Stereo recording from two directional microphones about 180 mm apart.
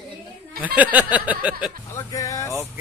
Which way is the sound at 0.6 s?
10° right (ahead or behind).